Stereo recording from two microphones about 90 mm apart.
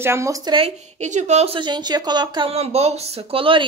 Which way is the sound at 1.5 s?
55° right (ahead or behind).